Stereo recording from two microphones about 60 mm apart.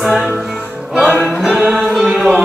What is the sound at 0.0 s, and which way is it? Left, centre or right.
Music, centre.